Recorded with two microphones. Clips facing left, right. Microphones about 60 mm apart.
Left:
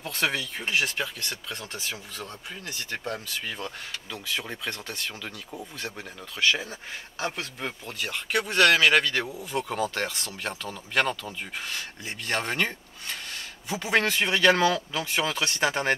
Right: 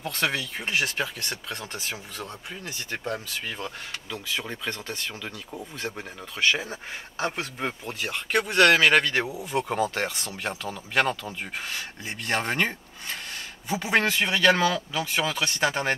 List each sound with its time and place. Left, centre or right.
0.0 s speech: centre
6.3 s speech: centre